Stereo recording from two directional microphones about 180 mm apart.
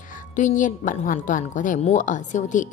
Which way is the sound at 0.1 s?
45° left (ahead or behind).